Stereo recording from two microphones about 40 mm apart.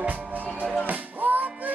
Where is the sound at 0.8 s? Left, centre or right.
Right.